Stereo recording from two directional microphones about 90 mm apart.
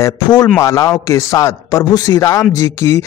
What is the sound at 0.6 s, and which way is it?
Speech, 40° left (ahead or behind).